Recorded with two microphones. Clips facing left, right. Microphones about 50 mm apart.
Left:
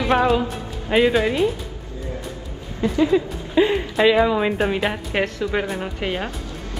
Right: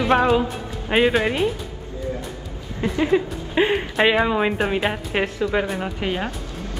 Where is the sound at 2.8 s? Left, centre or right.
Right.